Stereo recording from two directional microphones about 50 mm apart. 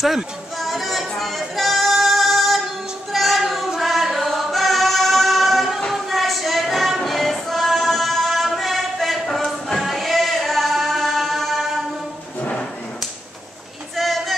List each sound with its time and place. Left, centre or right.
0.0 s music: centre
3.1 s choir: centre
5.8 s music: centre
12.4 s a sound: left
13.9 s vehicle: centre